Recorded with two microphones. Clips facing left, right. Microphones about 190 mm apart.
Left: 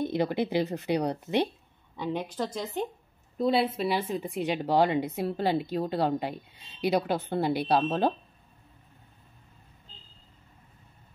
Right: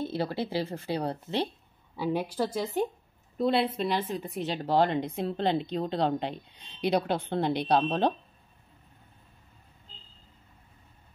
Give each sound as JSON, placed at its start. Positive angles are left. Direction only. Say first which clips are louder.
{"t": 0.0, "sound": "speech", "louder": "left 3 dB", "side_deg": 15}
{"t": 2.0, "sound": "a woman's voice", "louder": "right 2 dB", "side_deg": -10}